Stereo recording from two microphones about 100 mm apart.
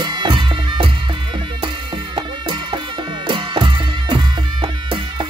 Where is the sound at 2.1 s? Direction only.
60° right (ahead or behind).